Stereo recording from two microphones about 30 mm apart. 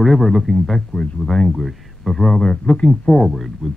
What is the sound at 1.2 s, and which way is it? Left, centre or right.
Speech, left.